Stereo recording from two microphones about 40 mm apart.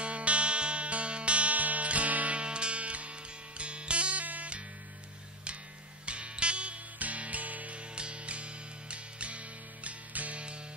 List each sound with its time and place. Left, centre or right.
0.0 s music: right
2.4 s music: right
6.0 s music: right
7.9 s music: right